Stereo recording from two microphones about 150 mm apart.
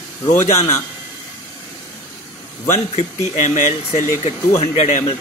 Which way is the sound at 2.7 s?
50° left (ahead or behind).